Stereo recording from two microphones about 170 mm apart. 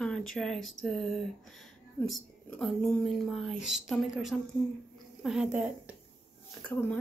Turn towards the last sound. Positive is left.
turn(degrees=5)  # may be behind; listen again after turning